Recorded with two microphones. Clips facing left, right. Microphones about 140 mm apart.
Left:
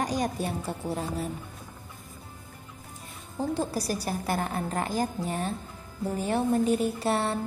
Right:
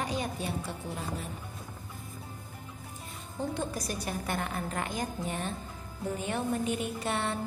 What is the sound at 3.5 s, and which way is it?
A woman's voice, 35° left (ahead or behind).